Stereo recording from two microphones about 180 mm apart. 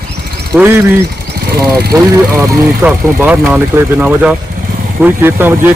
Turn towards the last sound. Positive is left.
turn(degrees=-10)  # may be behind; listen again after turning